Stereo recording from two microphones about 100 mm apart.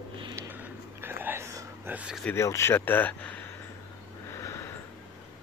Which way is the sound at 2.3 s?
30° left (ahead or behind).